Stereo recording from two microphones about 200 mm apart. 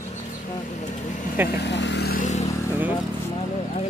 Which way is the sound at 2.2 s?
35° left (ahead or behind).